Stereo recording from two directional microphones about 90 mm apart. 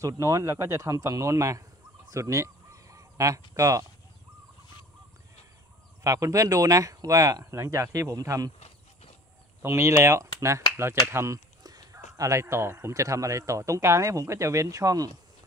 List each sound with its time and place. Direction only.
0.0 s speech: 35° right (ahead or behind)
2.0 s honk: 35° right (ahead or behind)
6.0 s speech: 40° right (ahead or behind)
9.6 s speech: 30° right (ahead or behind)